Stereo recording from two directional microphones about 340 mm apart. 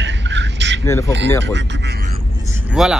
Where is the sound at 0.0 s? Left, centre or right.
Right.